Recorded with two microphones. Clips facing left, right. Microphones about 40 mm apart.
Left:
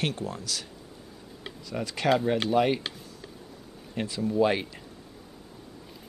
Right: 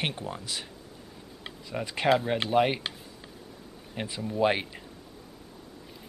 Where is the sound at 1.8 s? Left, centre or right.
Right.